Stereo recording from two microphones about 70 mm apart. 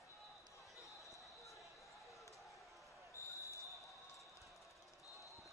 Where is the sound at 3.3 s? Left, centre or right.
Left.